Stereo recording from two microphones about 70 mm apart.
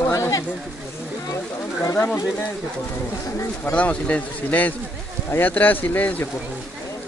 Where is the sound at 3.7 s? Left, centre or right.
Centre.